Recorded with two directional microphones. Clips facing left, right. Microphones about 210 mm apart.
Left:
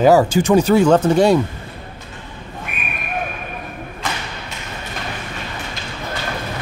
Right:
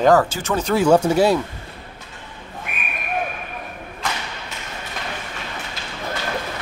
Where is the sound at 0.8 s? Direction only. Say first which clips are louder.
Left 2 dB; 10° right (ahead or behind).